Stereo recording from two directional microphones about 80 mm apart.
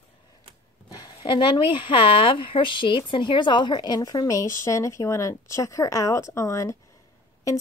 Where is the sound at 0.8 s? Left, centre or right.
Left.